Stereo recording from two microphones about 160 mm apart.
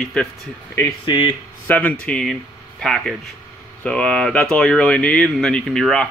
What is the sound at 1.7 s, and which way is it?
Speech, 10° left (ahead or behind).